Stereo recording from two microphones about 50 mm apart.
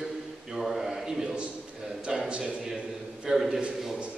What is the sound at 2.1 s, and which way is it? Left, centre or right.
A man's voice, centre.